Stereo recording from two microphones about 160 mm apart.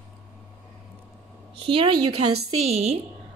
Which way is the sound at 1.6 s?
35° right (ahead or behind).